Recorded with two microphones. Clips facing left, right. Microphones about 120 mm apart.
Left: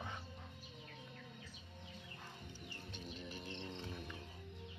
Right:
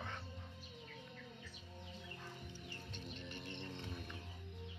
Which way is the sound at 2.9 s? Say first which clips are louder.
Left 2 dB; 5° left (ahead or behind).